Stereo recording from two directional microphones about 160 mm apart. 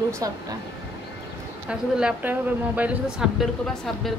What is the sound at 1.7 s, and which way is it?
A woman's voice, 5° right (ahead or behind).